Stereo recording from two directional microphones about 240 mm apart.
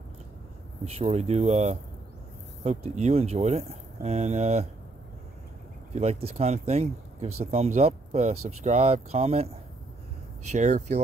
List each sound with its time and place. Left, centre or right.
0.8 s speech: right
5.9 s speech: right
10.5 s speech: right